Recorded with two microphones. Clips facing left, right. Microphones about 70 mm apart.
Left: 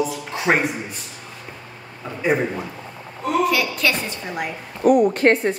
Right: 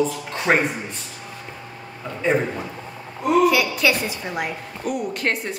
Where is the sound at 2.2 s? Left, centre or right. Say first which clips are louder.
Left 1 dB; centre.